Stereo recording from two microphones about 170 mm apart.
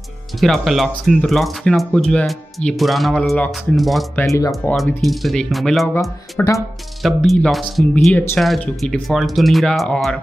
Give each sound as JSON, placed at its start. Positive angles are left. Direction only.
{"t": 0.4, "sound": "speech", "side_deg": 0}
{"t": 4.2, "sound": "speech", "side_deg": 20}
{"t": 4.5, "sound": "speech", "side_deg": 0}
{"t": 6.4, "sound": "speech", "side_deg": 10}
{"t": 7.0, "sound": "speech", "side_deg": 0}